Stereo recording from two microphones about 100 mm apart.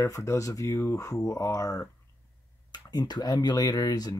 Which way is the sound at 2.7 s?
45° left (ahead or behind).